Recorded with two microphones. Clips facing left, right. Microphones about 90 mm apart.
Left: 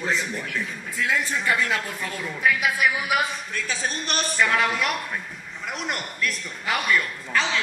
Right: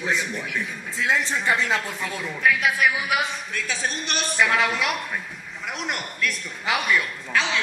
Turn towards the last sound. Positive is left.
turn(degrees=0)  # may be behind; listen again after turning